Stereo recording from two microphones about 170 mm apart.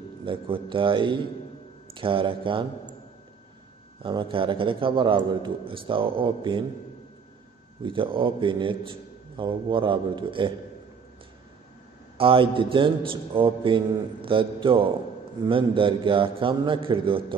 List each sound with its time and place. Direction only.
0.2 s a man's voice: 30° right (ahead or behind)
2.0 s mantra: 30° right (ahead or behind)
4.0 s a man's voice: 30° right (ahead or behind)
7.8 s a man's voice: 30° right (ahead or behind)
12.2 s mantra: 30° right (ahead or behind)